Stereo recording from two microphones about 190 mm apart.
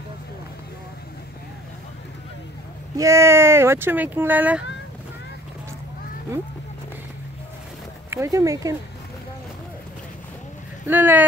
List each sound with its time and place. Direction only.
3.0 s speech: 15° right (ahead or behind)
8.1 s speech: 15° right (ahead or behind)
10.9 s speech: 10° right (ahead or behind)